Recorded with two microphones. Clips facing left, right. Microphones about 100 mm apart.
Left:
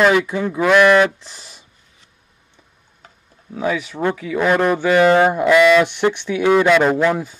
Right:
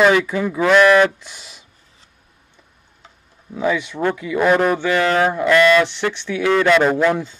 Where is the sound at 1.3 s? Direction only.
30° left (ahead or behind).